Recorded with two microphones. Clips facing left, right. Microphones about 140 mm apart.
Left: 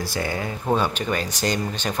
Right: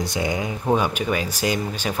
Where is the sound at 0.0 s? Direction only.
20° right (ahead or behind).